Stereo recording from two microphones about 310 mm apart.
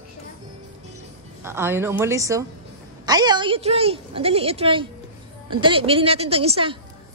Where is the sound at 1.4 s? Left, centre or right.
Centre.